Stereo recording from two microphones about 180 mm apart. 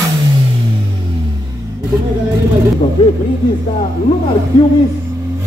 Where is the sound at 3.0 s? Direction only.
30° left (ahead or behind).